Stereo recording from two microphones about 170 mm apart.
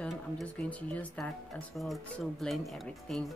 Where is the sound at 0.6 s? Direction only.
10° left (ahead or behind).